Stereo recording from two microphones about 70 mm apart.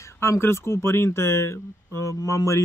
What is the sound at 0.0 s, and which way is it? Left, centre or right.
Speech, left.